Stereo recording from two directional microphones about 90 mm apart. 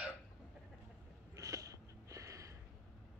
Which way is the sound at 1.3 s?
40° right (ahead or behind).